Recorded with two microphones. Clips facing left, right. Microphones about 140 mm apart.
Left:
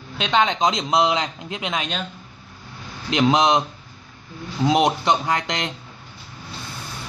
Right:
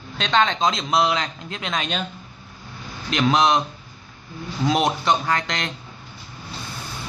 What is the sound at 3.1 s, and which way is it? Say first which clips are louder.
Speech: left 1 dB; 20° left (ahead or behind).